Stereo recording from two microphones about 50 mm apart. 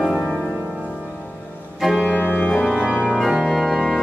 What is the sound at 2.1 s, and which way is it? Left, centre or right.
Organ, left.